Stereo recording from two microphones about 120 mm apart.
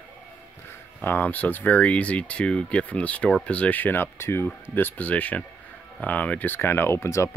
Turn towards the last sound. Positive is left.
turn(degrees=25)  # may be behind; listen again after turning